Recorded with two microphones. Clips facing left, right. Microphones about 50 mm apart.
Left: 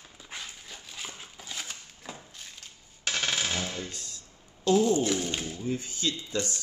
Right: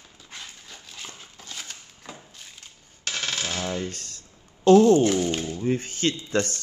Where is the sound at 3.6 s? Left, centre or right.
Right.